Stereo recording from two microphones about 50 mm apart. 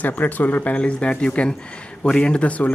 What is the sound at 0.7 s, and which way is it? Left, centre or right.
Speech, left.